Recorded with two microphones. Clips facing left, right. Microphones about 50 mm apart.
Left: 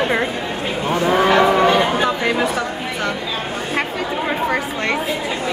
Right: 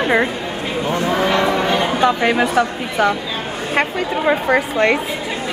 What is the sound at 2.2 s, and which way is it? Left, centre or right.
Speech, centre.